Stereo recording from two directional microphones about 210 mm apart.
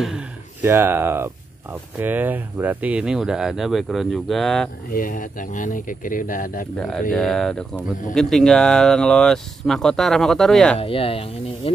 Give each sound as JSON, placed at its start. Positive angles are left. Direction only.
{"t": 0.0, "sound": "speech", "side_deg": -5}
{"t": 4.9, "sound": "speech", "side_deg": 40}
{"t": 6.8, "sound": "speech", "side_deg": 5}
{"t": 10.8, "sound": "speech", "side_deg": 25}